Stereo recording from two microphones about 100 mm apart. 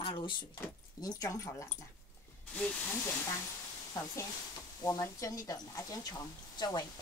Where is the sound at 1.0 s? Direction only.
35° left (ahead or behind).